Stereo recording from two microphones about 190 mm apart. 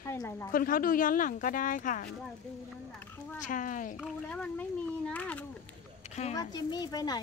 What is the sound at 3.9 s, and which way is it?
Speech, 5° left (ahead or behind).